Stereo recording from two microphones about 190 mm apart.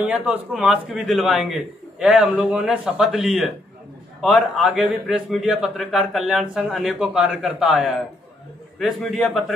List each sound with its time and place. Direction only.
0.0 s a man's voice: 5° right (ahead or behind)